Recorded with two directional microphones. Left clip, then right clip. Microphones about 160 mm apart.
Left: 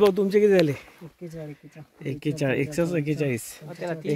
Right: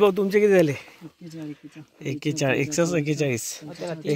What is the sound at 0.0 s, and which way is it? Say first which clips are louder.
Speech: even; 10° left (ahead or behind).